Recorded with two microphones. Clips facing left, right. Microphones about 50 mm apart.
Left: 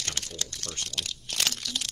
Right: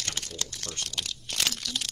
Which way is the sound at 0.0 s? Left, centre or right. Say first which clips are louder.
Even; centre.